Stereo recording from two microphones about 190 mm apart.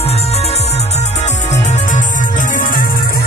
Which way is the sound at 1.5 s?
40° left (ahead or behind).